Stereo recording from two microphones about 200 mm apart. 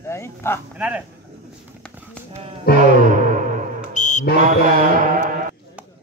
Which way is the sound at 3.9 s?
40° left (ahead or behind).